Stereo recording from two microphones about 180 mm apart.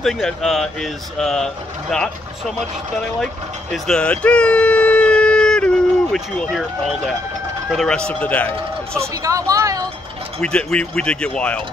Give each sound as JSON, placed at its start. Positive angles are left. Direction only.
{"t": 0.0, "sound": "speech", "side_deg": 0}
{"t": 3.7, "sound": "speech", "side_deg": 5}
{"t": 7.7, "sound": "speech", "side_deg": 5}
{"t": 9.0, "sound": "speech", "side_deg": -20}
{"t": 10.4, "sound": "speech", "side_deg": 5}